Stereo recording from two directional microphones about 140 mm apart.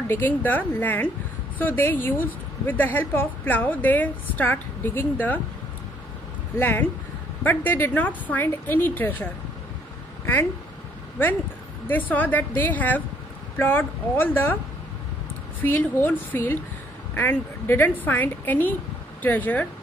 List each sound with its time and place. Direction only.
0.1 s a woman's voice: 15° left (ahead or behind)
6.6 s a woman's voice: 15° left (ahead or behind)
11.9 s a woman's voice: 10° left (ahead or behind)
15.6 s a woman's voice: 15° left (ahead or behind)